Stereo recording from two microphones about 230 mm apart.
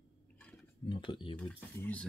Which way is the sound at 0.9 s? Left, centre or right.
Left.